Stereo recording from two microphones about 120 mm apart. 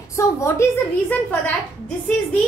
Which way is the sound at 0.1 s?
25° left (ahead or behind).